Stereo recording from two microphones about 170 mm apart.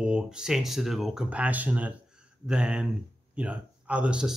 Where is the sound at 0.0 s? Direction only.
5° right (ahead or behind).